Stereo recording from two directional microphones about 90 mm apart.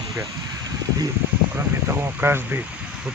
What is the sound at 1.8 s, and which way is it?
Speech, 25° right (ahead or behind).